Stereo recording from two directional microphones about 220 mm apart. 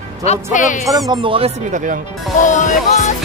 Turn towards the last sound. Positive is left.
turn(degrees=35)  # may be behind; listen again after turning